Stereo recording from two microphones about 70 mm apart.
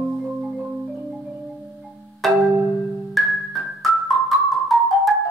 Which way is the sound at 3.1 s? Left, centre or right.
Centre.